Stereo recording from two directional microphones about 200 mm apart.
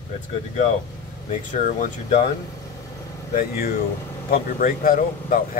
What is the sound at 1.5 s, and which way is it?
Speech, 40° left (ahead or behind).